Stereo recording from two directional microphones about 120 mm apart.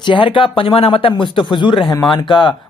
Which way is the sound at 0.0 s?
45° left (ahead or behind).